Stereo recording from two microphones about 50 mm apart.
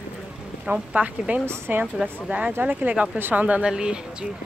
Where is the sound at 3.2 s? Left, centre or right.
Right.